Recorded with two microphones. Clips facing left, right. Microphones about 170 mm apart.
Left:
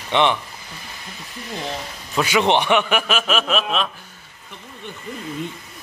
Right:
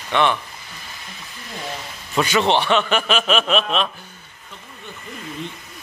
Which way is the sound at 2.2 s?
15° left (ahead or behind).